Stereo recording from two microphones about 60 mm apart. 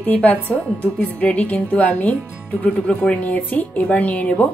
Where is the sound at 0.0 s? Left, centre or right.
Left.